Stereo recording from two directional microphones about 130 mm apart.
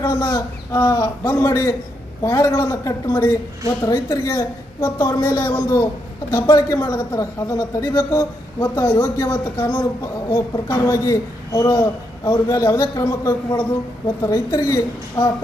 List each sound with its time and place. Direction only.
0.0 s a man's voice: 25° left (ahead or behind)